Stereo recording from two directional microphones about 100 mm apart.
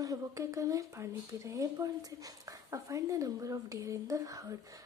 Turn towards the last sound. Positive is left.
turn(degrees=-35)  # may be behind; listen again after turning